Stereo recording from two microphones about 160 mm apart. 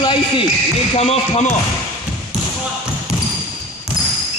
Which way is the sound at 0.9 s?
40° left (ahead or behind).